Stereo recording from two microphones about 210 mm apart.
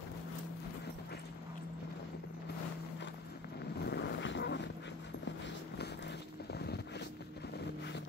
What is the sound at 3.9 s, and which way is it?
Vehicle, 55° left (ahead or behind).